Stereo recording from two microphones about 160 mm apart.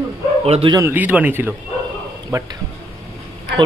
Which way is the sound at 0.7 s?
15° right (ahead or behind).